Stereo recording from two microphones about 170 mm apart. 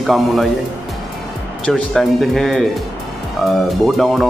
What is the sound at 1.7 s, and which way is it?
Speech, centre (ahead or behind).